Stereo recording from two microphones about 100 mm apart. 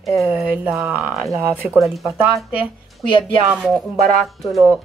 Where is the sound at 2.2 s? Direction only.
15° right (ahead or behind).